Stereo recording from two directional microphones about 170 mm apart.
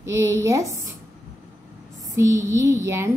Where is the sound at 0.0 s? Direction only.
15° right (ahead or behind).